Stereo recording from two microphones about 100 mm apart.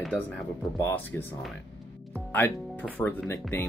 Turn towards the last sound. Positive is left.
turn(degrees=20)  # may be behind; listen again after turning